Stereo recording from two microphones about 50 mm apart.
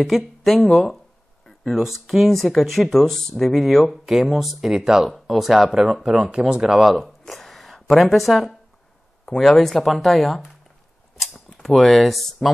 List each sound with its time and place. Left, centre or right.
0.0 s speech: centre
7.0 s a sound: centre
9.2 s speech: centre